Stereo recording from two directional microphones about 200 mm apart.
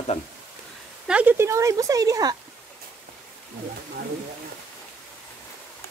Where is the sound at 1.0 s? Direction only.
10° right (ahead or behind).